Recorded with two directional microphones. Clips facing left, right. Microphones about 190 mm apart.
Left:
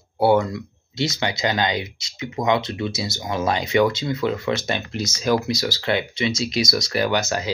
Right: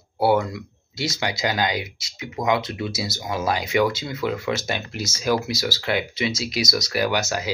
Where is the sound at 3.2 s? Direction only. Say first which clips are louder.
Left 2 dB; 5° right (ahead or behind).